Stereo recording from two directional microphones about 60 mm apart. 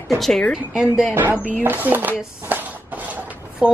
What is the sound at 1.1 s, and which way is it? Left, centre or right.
Speech, right.